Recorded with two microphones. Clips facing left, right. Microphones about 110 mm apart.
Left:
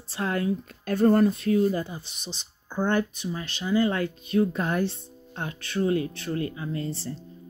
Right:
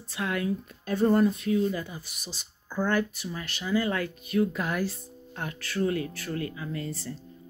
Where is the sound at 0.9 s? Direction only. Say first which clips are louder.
Left 3 dB; 55° left (ahead or behind).